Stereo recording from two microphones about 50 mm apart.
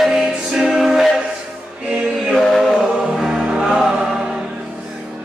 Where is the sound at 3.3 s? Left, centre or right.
Centre.